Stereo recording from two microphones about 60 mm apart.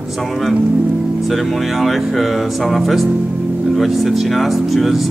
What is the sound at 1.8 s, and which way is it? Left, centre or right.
Speech, centre.